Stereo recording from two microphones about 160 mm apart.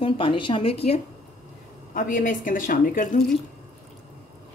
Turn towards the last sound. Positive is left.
turn(degrees=60)  # may be behind; listen again after turning